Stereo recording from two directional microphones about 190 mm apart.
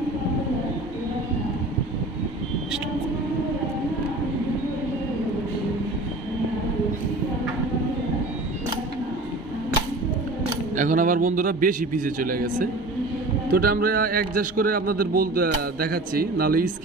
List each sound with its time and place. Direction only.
10.8 s a man's voice: 45° right (ahead or behind)